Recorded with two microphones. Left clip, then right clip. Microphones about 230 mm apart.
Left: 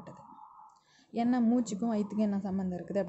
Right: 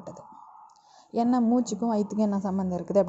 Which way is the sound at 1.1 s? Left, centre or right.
Centre.